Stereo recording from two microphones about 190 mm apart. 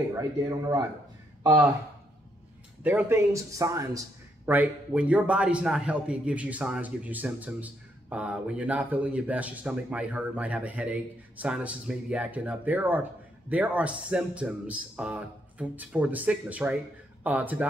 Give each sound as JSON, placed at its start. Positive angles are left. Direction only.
{"t": 0.1, "sound": "speech", "side_deg": -20}
{"t": 2.8, "sound": "a man's voice", "side_deg": -10}